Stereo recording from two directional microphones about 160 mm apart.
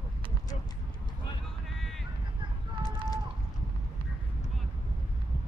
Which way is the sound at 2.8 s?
25° left (ahead or behind).